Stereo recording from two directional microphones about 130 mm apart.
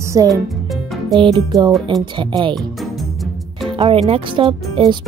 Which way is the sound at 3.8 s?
45° right (ahead or behind).